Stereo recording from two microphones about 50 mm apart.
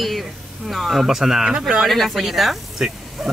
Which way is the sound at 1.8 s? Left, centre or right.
Centre.